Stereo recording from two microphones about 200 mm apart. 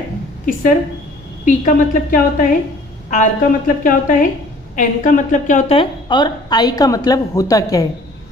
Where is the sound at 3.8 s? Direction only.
40° left (ahead or behind).